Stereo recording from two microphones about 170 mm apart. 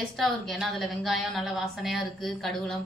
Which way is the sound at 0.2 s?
Centre (ahead or behind).